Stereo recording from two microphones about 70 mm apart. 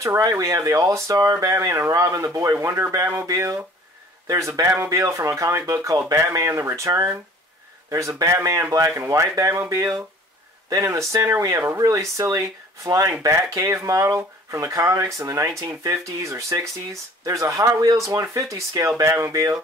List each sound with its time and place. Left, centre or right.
0.2 s speech: right
18.9 s speech: right